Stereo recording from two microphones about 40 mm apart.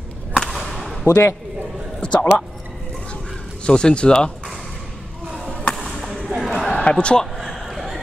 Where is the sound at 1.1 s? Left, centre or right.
Right.